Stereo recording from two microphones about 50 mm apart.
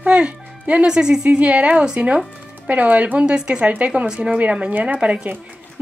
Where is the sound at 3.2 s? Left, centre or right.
Centre.